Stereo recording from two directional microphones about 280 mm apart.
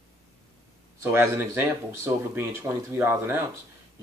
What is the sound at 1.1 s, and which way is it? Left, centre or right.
Speech, centre.